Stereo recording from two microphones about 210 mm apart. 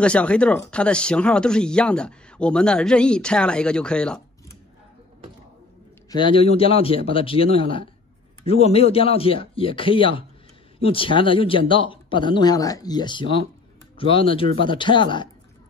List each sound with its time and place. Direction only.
0.0 s speech: 5° left (ahead or behind)
6.0 s speech: 20° left (ahead or behind)